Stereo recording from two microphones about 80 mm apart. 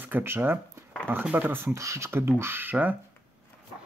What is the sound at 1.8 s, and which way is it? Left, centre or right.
Speech, right.